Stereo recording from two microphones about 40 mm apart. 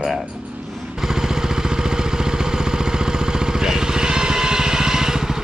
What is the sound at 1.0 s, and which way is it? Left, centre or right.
Vehicle, centre.